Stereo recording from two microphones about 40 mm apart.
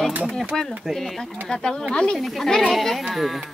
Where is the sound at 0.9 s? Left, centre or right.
Centre.